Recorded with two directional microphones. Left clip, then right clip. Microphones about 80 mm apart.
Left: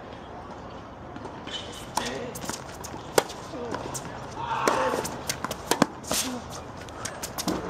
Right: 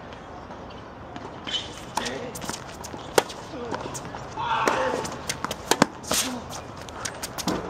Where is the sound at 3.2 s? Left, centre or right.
Centre.